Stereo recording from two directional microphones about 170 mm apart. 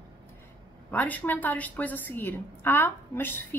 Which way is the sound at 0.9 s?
10° left (ahead or behind).